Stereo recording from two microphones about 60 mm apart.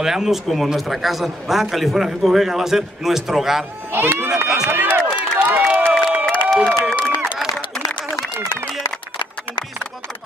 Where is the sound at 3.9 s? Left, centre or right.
Right.